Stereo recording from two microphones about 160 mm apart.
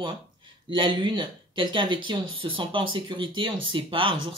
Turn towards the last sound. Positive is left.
turn(degrees=-35)  # may be behind; listen again after turning